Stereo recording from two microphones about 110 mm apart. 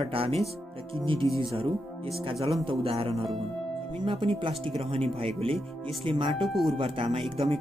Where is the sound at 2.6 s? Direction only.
55° right (ahead or behind).